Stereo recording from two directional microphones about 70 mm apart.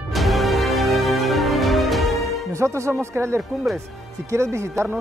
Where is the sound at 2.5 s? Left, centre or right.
Right.